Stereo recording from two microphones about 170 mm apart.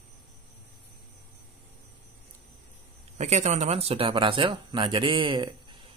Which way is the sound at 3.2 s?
45° right (ahead or behind).